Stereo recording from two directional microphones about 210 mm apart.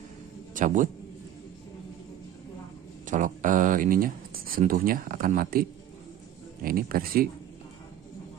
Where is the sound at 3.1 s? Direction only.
40° right (ahead or behind).